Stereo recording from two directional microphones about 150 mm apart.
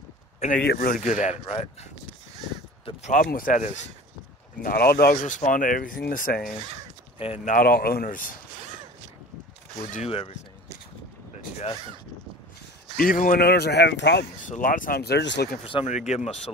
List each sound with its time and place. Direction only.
0.4 s speech: 70° left (ahead or behind); by 1.4 s 55° left (ahead or behind)
1.4 s speech: 40° left (ahead or behind)
3.0 s speech: 60° left (ahead or behind)
4.6 s speech: 80° left
7.4 s speech: 80° left
10.0 s speech: 40° left (ahead or behind)
12.9 s speech: 70° left (ahead or behind); by 14.2 s 90° left
14.6 s speech: 65° left (ahead or behind); by 15.6 s 90° left
15.6 s speech: 40° left (ahead or behind)